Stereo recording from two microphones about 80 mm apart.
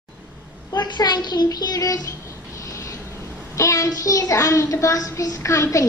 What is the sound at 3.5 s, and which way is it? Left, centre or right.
A child's voice, left.